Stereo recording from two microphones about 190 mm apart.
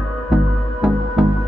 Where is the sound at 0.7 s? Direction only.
Centre (ahead or behind).